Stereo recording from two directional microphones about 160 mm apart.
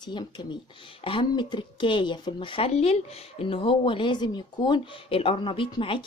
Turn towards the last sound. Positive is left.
turn(degrees=30)  # may be behind; listen again after turning